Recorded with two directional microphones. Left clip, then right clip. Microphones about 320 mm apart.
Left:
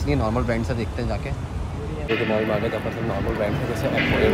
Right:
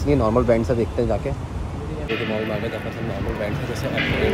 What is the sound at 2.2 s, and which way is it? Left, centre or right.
Speech, centre.